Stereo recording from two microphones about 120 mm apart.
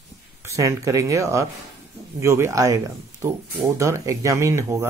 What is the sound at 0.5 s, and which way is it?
Speech, 25° right (ahead or behind).